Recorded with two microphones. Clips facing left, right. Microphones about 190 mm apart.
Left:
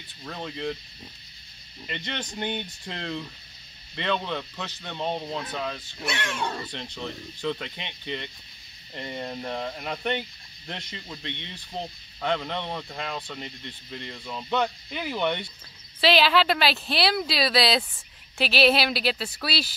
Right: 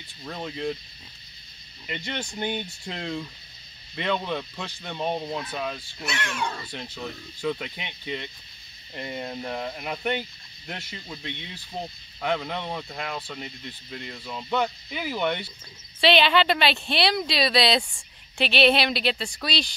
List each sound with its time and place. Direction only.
0.2 s speech: 10° right (ahead or behind)
1.9 s speech: 10° right (ahead or behind)
6.1 s speech: 30° left (ahead or behind)
6.7 s speech: 5° right (ahead or behind)